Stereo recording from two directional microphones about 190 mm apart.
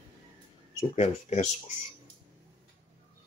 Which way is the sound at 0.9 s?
35° left (ahead or behind).